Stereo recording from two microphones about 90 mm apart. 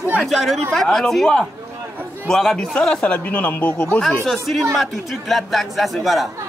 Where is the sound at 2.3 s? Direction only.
5° left (ahead or behind).